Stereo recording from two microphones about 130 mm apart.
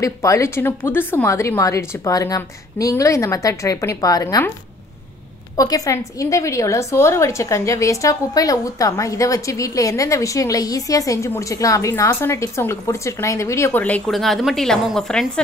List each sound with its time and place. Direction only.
0.0 s a woman's voice: 25° left (ahead or behind)
5.6 s a woman's voice: 25° left (ahead or behind); by 14.1 s 10° left (ahead or behind)
14.1 s a woman's voice: centre (ahead or behind)